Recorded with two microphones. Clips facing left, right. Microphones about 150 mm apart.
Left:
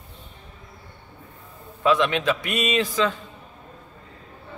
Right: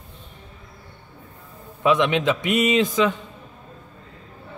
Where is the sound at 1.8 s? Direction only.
20° right (ahead or behind).